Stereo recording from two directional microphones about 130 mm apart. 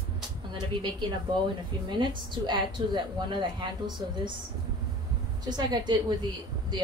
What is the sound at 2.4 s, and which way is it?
A woman's voice, 35° right (ahead or behind).